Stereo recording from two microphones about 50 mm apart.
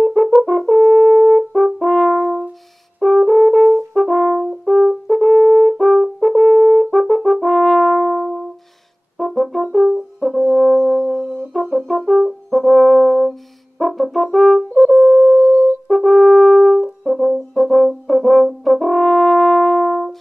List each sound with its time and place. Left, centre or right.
0.0 s french horn: centre
9.2 s brass instrument: centre
15.0 s music: centre
15.3 s music: right
15.9 s french horn: centre